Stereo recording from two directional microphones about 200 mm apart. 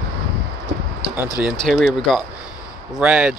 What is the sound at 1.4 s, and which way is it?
Speech, centre (ahead or behind).